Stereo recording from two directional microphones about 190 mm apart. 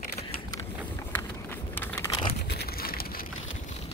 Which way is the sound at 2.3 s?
60° left (ahead or behind).